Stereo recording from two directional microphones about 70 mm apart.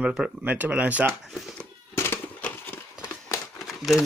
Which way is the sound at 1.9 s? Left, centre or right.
Left.